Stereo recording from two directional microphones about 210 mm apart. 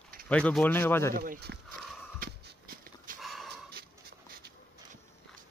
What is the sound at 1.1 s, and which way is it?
Speech, 45° right (ahead or behind).